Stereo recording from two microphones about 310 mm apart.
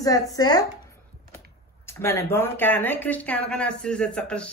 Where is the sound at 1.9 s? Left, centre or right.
Centre.